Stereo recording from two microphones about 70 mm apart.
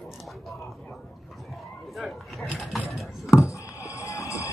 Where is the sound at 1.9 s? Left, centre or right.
Centre.